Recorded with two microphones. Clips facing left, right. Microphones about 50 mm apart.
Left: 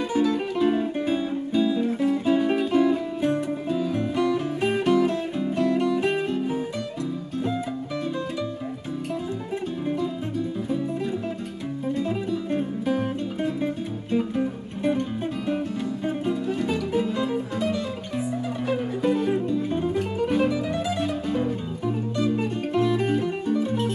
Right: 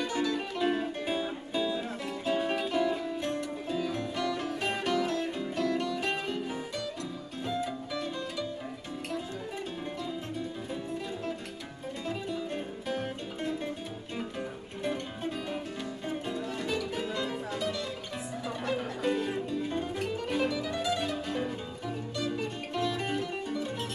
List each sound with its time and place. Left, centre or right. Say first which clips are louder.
0.1 s music: left 8 dB; centre
12.4 s music: left 10 dB; centre
16.1 s music: left 8 dB; centre